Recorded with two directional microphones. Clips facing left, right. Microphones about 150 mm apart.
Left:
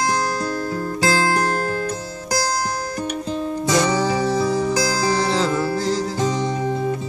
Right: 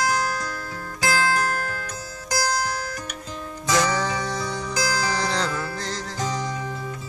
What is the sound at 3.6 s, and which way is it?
Music, 30° left (ahead or behind).